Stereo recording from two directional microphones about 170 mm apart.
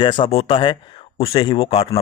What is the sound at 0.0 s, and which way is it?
Speech, 30° left (ahead or behind).